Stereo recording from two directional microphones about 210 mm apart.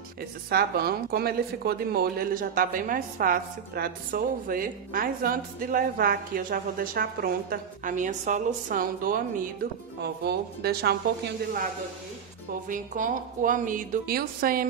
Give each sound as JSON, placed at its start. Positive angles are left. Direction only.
{"t": 0.5, "sound": "a woman's voice", "side_deg": -45}
{"t": 12.6, "sound": "a woman's voice", "side_deg": -40}